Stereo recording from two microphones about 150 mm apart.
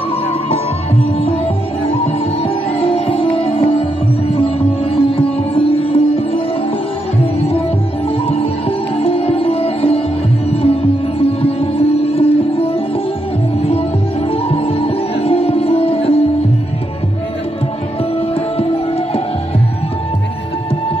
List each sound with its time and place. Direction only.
2.8 s music: 40° left (ahead or behind)
8.3 s sitar: 40° left (ahead or behind)
10.5 s music: 40° left (ahead or behind)
14.3 s music: 40° left (ahead or behind)